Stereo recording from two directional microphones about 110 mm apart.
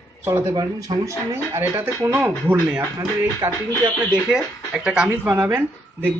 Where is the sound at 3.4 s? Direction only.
30° right (ahead or behind).